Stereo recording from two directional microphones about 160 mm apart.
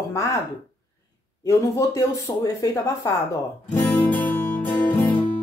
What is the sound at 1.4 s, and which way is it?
Speech, 20° left (ahead or behind).